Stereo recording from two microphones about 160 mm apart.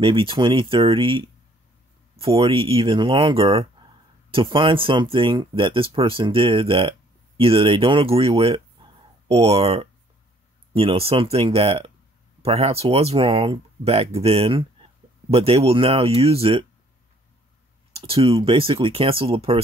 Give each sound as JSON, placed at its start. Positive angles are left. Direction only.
{"t": 0.0, "sound": "speech", "side_deg": -35}
{"t": 2.3, "sound": "speech", "side_deg": -35}
{"t": 18.0, "sound": "speech", "side_deg": -35}